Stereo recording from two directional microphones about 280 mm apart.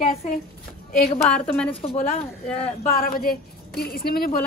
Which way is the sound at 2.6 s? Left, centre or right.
Left.